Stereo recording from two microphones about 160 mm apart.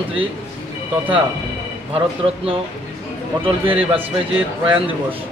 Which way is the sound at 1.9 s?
35° right (ahead or behind).